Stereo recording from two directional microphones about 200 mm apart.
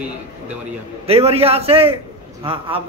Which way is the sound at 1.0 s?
30° right (ahead or behind).